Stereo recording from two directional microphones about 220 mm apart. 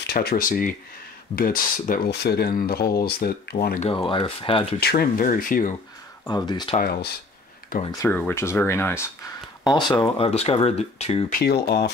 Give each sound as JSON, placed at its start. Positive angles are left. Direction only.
{"t": 0.0, "sound": "speech", "side_deg": 45}
{"t": 3.9, "sound": "speech", "side_deg": 20}
{"t": 4.7, "sound": "speech", "side_deg": 45}
{"t": 6.2, "sound": "speech", "side_deg": 20}
{"t": 6.8, "sound": "speech", "side_deg": 40}
{"t": 8.0, "sound": "speech", "side_deg": 5}
{"t": 11.3, "sound": "speech", "side_deg": 45}